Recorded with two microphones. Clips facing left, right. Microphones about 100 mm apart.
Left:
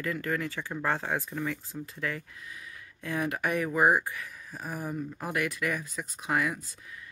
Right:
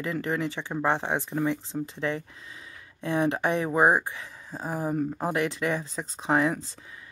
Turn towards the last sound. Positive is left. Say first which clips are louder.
# right 5 dB
turn(degrees=-30)  # may be behind; listen again after turning